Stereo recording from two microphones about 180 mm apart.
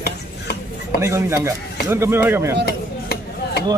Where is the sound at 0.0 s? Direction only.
60° left (ahead or behind).